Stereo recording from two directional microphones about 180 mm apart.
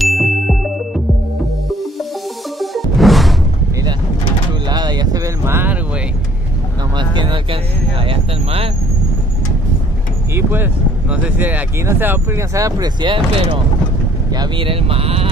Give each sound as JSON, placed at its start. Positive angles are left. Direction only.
{"t": 0.0, "sound": "ding", "side_deg": 0}
{"t": 2.6, "sound": "music", "side_deg": 0}
{"t": 4.6, "sound": "a sound", "side_deg": -25}
{"t": 7.0, "sound": "vehicle", "side_deg": -25}
{"t": 8.0, "sound": "a sound", "side_deg": -30}
{"t": 10.3, "sound": "speech", "side_deg": -10}